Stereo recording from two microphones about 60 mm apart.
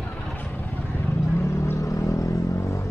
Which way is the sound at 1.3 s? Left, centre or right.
Left.